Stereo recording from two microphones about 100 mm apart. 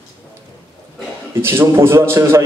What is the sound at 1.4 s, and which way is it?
A man's voice, 25° right (ahead or behind).